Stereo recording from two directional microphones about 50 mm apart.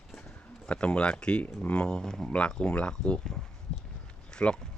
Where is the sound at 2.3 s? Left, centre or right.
Left.